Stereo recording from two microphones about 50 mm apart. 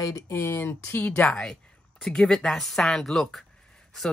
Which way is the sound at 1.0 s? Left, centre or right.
Left.